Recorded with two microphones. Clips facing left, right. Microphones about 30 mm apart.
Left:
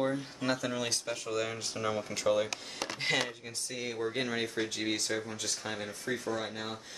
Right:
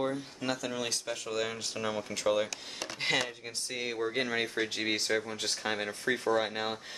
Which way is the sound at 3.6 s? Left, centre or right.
Right.